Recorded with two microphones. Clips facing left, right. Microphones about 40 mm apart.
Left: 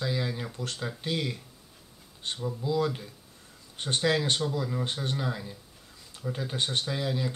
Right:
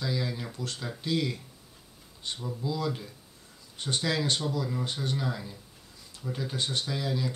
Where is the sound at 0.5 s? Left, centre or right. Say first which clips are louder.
Left 2 dB; left.